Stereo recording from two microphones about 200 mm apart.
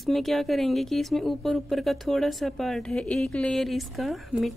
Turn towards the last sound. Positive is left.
turn(degrees=0)  # may be behind; listen again after turning